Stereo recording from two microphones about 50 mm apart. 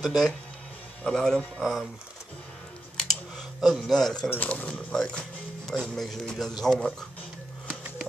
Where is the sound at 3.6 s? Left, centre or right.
Centre.